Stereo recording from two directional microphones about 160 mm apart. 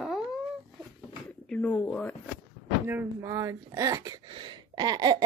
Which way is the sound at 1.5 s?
10° left (ahead or behind).